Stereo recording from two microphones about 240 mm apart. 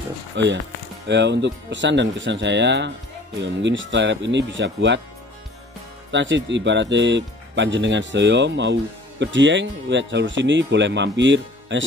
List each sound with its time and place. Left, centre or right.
0.3 s speech: right
6.1 s speech: right